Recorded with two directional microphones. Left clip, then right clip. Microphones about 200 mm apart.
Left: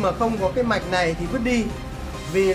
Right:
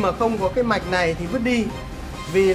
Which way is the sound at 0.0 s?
20° right (ahead or behind).